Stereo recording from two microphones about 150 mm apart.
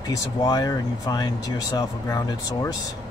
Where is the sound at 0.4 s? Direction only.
25° left (ahead or behind).